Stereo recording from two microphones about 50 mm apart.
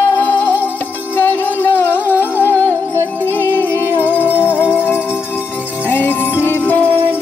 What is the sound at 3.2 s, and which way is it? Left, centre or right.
Music, left.